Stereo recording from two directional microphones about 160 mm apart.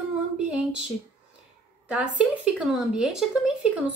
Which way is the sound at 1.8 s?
5° right (ahead or behind).